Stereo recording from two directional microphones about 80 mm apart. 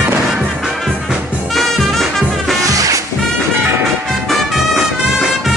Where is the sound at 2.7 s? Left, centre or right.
Right.